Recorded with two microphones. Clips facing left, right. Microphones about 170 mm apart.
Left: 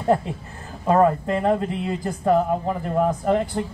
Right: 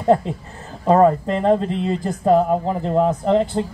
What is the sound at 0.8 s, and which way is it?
Speech, 30° right (ahead or behind).